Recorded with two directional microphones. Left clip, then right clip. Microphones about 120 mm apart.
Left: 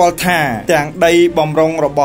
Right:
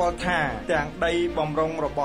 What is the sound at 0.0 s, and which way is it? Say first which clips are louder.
Speech: left 11 dB; 35° left (ahead or behind).